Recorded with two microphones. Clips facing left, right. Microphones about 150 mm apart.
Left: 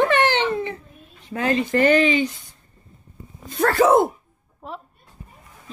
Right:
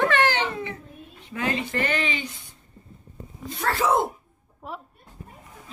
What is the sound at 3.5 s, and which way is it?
Speech, 50° left (ahead or behind).